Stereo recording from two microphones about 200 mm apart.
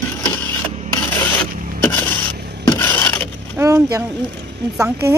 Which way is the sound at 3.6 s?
15° right (ahead or behind).